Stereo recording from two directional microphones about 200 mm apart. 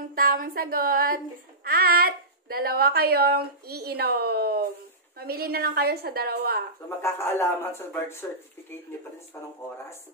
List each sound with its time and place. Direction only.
0.1 s speech: 45° right (ahead or behind)
7.0 s speech: 15° left (ahead or behind)